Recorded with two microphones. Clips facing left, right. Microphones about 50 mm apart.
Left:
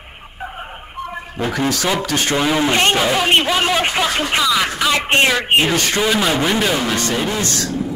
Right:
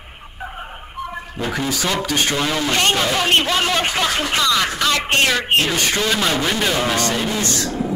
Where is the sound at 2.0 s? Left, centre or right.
Left.